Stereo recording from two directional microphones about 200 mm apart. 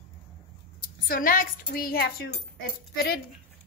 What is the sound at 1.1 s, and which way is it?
A woman's voice, 45° left (ahead or behind).